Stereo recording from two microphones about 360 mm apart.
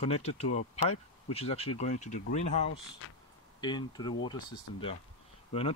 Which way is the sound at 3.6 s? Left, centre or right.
Centre.